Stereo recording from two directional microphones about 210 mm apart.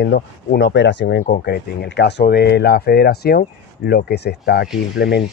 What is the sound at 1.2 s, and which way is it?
Speech, 45° left (ahead or behind).